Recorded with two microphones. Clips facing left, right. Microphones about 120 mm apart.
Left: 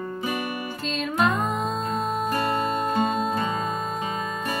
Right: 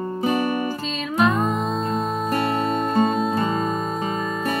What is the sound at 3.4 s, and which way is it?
Music, 35° right (ahead or behind).